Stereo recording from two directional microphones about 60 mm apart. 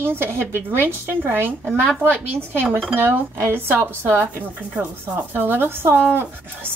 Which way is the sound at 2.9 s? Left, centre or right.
Right.